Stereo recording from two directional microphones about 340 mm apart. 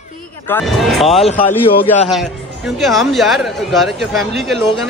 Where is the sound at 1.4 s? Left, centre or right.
Centre.